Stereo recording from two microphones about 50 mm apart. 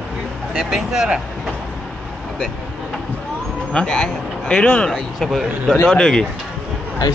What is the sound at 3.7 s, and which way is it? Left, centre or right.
Speech, centre.